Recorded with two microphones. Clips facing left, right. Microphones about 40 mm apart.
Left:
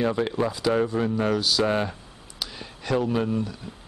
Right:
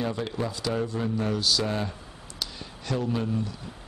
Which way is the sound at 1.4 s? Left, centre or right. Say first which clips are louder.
Left 3 dB; centre.